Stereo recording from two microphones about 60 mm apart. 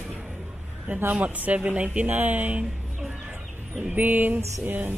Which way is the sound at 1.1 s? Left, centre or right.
Right.